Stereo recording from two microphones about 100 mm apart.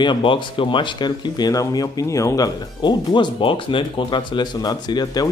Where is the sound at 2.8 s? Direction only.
50° left (ahead or behind).